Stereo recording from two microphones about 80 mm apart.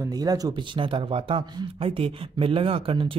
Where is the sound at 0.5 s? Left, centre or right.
Right.